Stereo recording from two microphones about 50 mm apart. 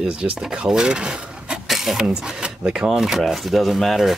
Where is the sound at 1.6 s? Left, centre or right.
Centre.